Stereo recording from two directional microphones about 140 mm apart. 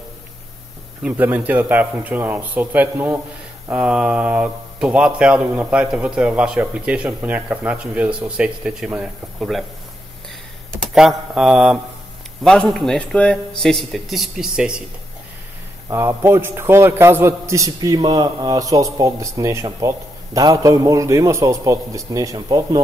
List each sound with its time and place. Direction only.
1.0 s speech: 15° right (ahead or behind)
10.7 s a man's voice: centre (ahead or behind)
15.9 s a man's voice: 20° right (ahead or behind)